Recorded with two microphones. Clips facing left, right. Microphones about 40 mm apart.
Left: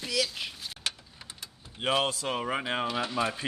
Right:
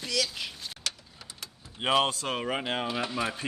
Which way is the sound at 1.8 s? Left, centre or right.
Centre.